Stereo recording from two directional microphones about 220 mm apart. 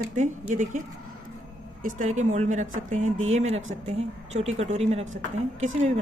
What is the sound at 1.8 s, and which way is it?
A woman's voice, 35° right (ahead or behind).